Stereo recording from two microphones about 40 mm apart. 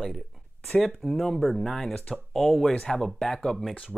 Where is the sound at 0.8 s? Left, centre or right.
Centre.